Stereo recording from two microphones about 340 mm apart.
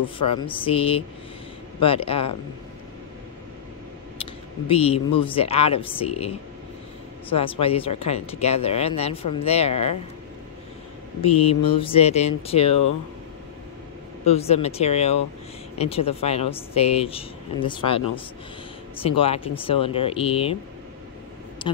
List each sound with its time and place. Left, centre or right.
0.3 s speech: centre
4.2 s a sound: centre
5.2 s speech: centre
11.1 s speech: centre
14.2 s speech: centre
19.0 s speech: centre
21.6 s speech: centre